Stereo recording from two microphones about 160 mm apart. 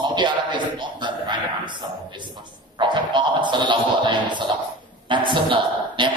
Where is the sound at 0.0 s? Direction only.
30° right (ahead or behind).